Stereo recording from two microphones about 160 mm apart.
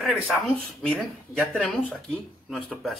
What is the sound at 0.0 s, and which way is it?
Speech, centre (ahead or behind).